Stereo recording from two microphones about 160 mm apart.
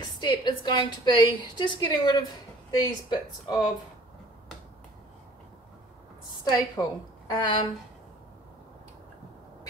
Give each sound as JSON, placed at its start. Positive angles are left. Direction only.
{"t": 0.0, "sound": "a woman's voice", "side_deg": 25}
{"t": 6.4, "sound": "a woman's voice", "side_deg": 25}